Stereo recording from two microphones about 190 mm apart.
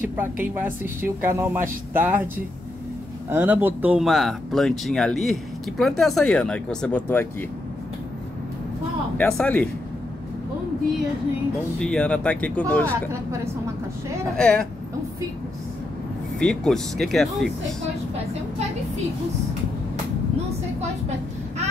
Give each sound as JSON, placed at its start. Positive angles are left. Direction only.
{"t": 0.0, "sound": "speech", "side_deg": -10}
{"t": 3.3, "sound": "speech", "side_deg": -10}
{"t": 9.2, "sound": "speech", "side_deg": 5}
{"t": 11.8, "sound": "speech", "side_deg": 5}
{"t": 14.3, "sound": "speech", "side_deg": 5}
{"t": 16.3, "sound": "speech", "side_deg": 5}